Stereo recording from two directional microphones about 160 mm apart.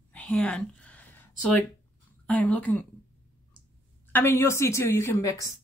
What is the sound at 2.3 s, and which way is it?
Speech, 10° left (ahead or behind).